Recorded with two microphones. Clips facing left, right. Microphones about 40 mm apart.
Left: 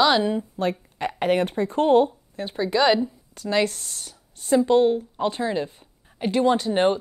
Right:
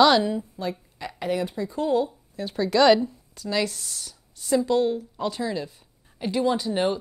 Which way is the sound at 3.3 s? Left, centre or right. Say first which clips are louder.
Left 4 dB; left.